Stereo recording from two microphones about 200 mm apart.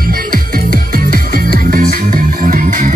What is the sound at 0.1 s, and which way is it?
Music, 45° right (ahead or behind).